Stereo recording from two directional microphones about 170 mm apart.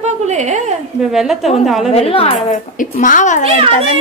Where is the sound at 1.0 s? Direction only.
Centre (ahead or behind).